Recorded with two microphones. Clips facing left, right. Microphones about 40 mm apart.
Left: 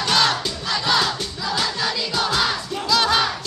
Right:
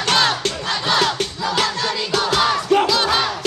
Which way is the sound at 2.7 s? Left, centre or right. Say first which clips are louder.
Right 13 dB; right.